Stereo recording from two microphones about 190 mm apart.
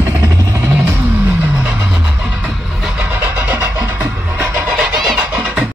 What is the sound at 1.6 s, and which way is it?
Vehicle, 10° right (ahead or behind).